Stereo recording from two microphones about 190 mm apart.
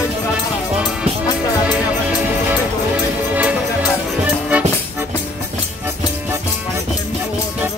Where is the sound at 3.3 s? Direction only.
10° right (ahead or behind).